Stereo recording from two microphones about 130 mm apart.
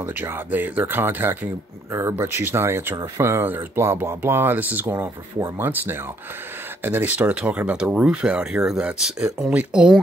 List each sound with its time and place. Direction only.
0.0 s speech: 15° right (ahead or behind)